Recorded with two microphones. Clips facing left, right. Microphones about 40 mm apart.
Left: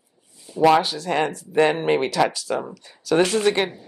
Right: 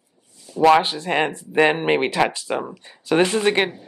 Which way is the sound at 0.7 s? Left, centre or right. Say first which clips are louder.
Right 2 dB; right.